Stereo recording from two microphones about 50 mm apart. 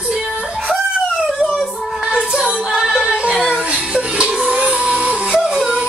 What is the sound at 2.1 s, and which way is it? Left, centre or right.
Music, centre.